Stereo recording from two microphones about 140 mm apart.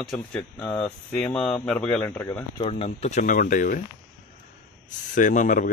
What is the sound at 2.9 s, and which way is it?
Speech, 55° left (ahead or behind).